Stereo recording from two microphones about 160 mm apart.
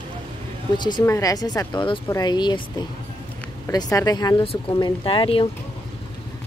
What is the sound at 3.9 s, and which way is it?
Speech, 25° left (ahead or behind).